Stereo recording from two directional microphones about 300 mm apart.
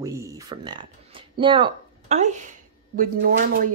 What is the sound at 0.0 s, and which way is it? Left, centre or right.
Speech, centre.